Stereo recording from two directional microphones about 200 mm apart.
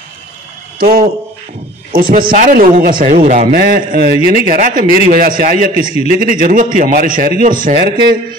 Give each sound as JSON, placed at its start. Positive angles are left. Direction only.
{"t": 0.7, "sound": "a man's voice", "side_deg": -45}
{"t": 7.7, "sound": "a man's voice", "side_deg": -25}